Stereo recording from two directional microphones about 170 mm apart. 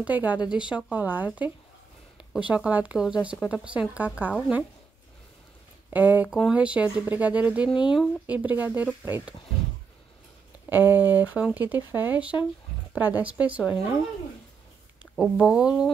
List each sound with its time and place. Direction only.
0.0 s speech: 10° right (ahead or behind)
5.9 s speech: 10° right (ahead or behind)
10.7 s speech: 10° right (ahead or behind)
15.1 s speech: 5° right (ahead or behind)